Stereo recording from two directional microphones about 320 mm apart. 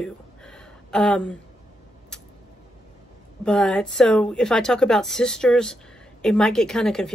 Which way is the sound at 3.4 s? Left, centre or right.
Centre.